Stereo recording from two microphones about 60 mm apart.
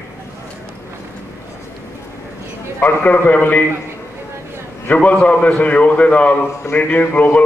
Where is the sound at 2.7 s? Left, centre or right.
Left.